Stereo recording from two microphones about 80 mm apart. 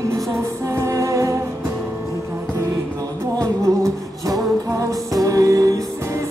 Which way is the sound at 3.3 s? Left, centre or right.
Right.